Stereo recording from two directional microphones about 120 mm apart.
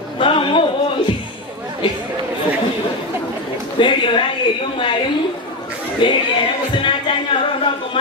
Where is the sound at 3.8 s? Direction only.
45° left (ahead or behind).